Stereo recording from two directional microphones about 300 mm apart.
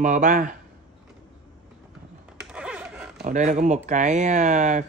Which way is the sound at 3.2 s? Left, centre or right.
Right.